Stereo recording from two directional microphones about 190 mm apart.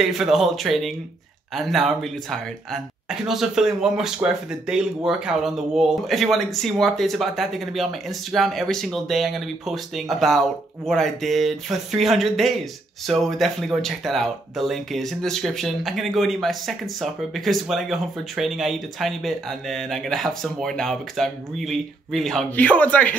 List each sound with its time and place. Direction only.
0.0 s speech: centre (ahead or behind)